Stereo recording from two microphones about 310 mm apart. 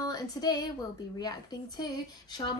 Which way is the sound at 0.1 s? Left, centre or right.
Centre.